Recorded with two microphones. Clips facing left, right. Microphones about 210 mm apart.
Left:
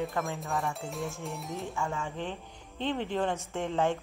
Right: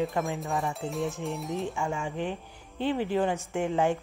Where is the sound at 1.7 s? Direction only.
15° right (ahead or behind).